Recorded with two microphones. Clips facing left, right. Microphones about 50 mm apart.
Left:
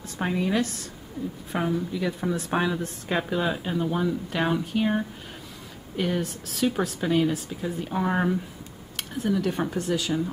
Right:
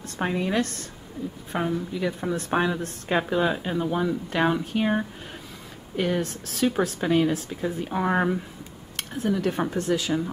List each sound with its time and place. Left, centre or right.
0.2 s speech: centre
0.6 s a woman's voice: right
1.5 s speech: centre
6.2 s speech: centre
6.7 s speech: centre
8.9 s speech: centre